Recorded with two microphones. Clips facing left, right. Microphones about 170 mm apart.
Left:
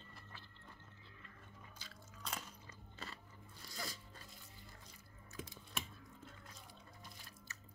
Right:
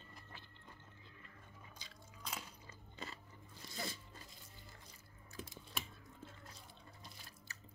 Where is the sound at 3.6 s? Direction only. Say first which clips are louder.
Right 3 dB; 25° right (ahead or behind).